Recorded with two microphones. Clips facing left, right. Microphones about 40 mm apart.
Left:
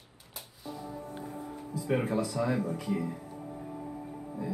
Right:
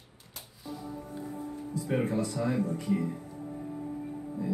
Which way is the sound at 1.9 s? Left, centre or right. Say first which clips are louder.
Left 1 dB; left.